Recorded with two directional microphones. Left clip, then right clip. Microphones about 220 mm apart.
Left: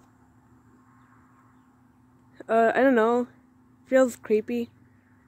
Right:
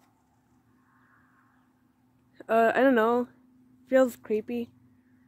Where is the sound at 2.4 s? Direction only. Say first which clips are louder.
Left 2 dB; 5° right (ahead or behind).